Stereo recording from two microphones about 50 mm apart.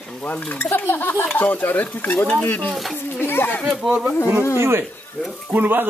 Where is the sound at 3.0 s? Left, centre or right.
Left.